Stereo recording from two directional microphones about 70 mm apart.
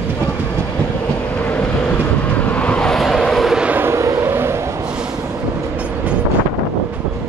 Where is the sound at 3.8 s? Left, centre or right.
Right.